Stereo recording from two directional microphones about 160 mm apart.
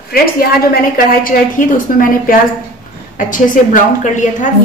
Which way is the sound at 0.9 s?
65° left (ahead or behind).